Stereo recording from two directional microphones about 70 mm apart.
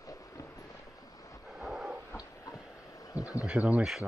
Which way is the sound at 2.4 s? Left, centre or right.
Left.